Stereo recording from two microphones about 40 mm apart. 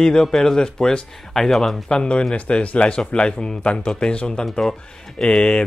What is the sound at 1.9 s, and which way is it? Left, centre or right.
Speech, left.